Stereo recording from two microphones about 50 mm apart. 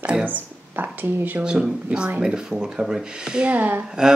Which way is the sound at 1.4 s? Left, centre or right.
Centre.